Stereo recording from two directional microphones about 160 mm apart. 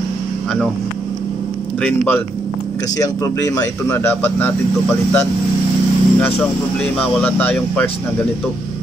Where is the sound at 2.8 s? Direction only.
20° left (ahead or behind).